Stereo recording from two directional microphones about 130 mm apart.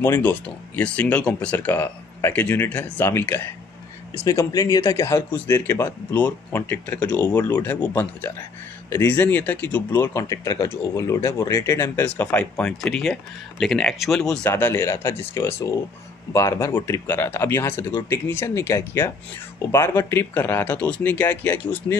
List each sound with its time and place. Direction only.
0.0 s speech: 15° left (ahead or behind)
14.3 s speech: 15° left (ahead or behind)